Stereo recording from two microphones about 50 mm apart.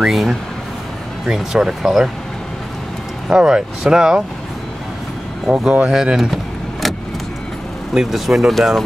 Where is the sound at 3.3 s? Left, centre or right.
Centre.